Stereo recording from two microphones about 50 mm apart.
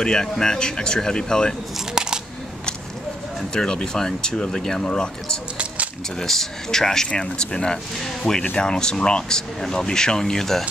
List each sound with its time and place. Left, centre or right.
0.0 s speech: centre
2.0 s camera: centre
3.3 s speech: centre